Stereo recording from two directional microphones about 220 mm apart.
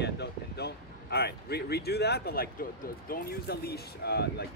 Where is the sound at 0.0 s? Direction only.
50° left (ahead or behind).